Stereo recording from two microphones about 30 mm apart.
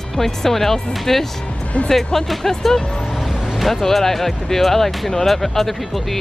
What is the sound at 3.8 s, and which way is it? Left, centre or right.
Speech, centre.